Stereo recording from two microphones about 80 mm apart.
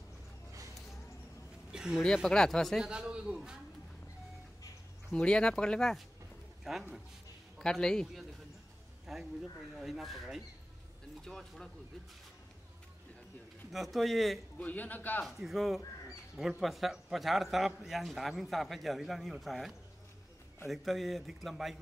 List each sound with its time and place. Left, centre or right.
1.7 s speech: centre
2.2 s speech: centre
2.8 s a man's voice: centre
5.1 s a man's voice: centre
9.1 s a man's voice: centre
13.7 s a man's voice: centre
14.6 s a man's voice: left
15.2 s a man's voice: centre